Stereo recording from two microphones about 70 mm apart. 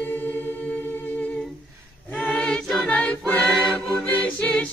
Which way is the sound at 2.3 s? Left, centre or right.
Centre.